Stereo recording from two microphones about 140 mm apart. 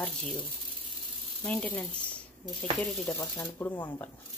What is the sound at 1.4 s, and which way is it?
Speech, 10° left (ahead or behind).